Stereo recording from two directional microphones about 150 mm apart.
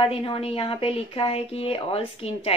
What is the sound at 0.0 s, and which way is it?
Speech, 35° left (ahead or behind).